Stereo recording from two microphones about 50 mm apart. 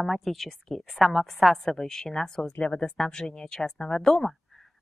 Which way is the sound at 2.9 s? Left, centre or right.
Centre.